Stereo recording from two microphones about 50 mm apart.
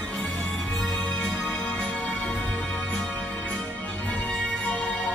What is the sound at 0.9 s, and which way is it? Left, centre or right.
Music, left.